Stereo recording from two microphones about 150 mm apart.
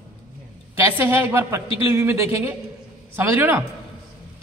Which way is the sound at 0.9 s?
15° right (ahead or behind).